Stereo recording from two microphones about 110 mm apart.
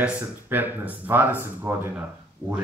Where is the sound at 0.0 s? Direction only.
15° right (ahead or behind).